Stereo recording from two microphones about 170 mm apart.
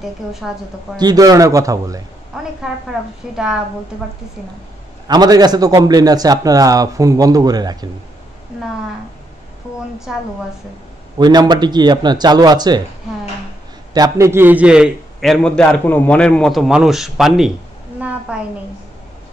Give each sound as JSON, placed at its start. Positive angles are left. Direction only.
{"t": 0.0, "sound": "a man's voice", "side_deg": 0}
{"t": 0.9, "sound": "a man's voice", "side_deg": -25}
{"t": 2.3, "sound": "a man's voice", "side_deg": -5}
{"t": 5.0, "sound": "a man's voice", "side_deg": -25}
{"t": 10.1, "sound": "a man's voice", "side_deg": -5}
{"t": 11.1, "sound": "a man's voice", "side_deg": -25}
{"t": 13.9, "sound": "a man's voice", "side_deg": -20}